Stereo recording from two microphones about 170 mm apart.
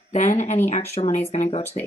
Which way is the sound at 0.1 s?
45° left (ahead or behind).